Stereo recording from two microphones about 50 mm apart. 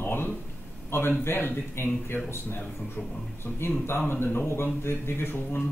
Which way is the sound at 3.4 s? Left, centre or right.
Left.